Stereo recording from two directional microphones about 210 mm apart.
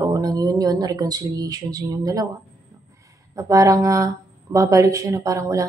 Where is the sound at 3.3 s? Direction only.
15° right (ahead or behind).